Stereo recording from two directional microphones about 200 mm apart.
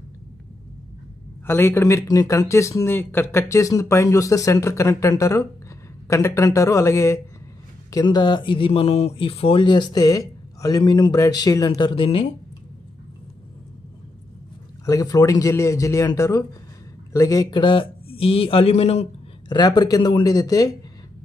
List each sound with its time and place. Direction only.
1.4 s speech: 10° left (ahead or behind)
14.9 s speech: 15° left (ahead or behind)